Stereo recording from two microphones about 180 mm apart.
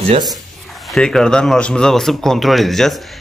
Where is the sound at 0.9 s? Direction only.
Centre (ahead or behind).